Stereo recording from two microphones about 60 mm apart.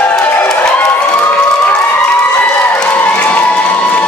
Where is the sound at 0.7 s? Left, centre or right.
Left.